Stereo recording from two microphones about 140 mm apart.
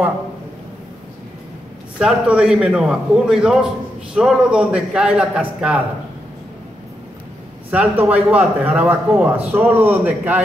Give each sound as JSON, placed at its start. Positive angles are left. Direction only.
{"t": 2.0, "sound": "a man's voice", "side_deg": -5}
{"t": 7.7, "sound": "a man's voice", "side_deg": -10}